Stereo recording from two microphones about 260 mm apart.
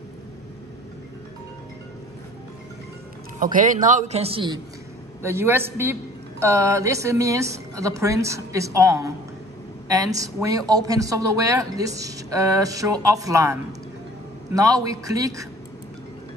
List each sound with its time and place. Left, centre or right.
3.5 s a man's voice: right
5.2 s a man's voice: centre